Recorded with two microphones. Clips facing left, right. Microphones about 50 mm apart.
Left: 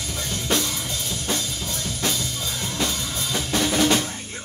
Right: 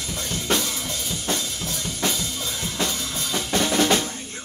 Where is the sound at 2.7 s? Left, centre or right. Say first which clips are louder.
Left 1 dB; centre.